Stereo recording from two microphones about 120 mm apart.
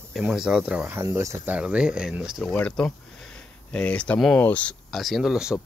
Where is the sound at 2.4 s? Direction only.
10° left (ahead or behind).